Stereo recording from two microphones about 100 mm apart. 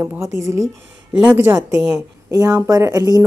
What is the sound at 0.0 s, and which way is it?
Speech, 30° right (ahead or behind).